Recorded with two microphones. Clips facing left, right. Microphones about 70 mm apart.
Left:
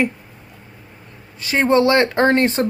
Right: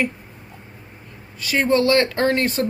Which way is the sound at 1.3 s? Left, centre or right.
Left.